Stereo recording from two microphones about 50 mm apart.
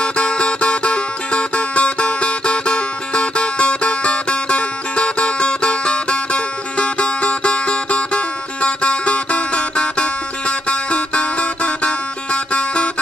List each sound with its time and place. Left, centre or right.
0.0 s music: left